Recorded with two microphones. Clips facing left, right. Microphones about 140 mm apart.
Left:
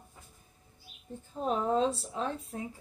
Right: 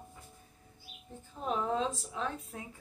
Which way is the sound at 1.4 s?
35° left (ahead or behind).